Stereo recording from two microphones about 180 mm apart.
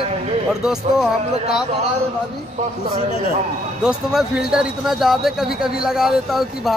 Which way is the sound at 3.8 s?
5° right (ahead or behind).